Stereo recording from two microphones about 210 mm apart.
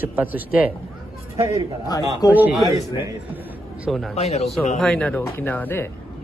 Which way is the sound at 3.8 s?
Centre (ahead or behind).